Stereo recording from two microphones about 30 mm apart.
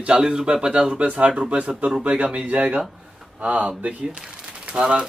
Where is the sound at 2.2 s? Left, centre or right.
Right.